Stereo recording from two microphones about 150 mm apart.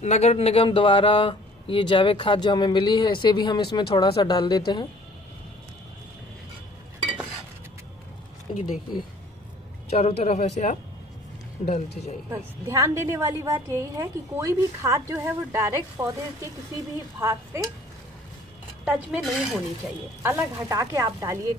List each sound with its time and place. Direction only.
0.0 s speech: 45° left (ahead or behind); by 4.8 s 30° left (ahead or behind)
8.5 s speech: 35° left (ahead or behind)
9.8 s speech: 45° left (ahead or behind)
12.3 s a woman's voice: 20° right (ahead or behind)
18.9 s speech: 5° right (ahead or behind)
20.2 s a woman's voice: 20° right (ahead or behind)